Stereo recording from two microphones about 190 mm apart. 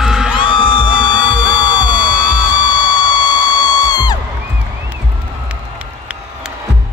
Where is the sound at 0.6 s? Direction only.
25° left (ahead or behind).